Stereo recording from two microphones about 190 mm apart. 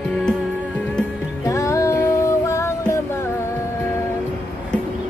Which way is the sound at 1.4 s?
15° left (ahead or behind).